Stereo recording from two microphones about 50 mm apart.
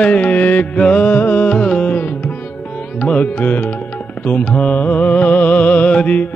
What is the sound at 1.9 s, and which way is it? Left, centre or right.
Music, left.